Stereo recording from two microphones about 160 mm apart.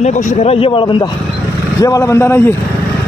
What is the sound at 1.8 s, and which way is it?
Speech, 20° left (ahead or behind).